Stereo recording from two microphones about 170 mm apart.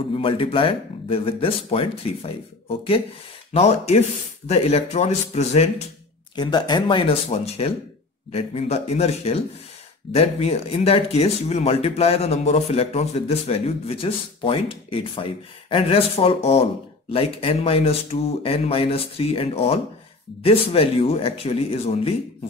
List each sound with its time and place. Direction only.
0.1 s speech: 30° left (ahead or behind)
3.5 s speech: 40° left (ahead or behind)
6.3 s speech: 25° left (ahead or behind)